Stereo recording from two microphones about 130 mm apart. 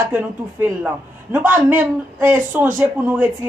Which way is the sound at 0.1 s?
15° right (ahead or behind).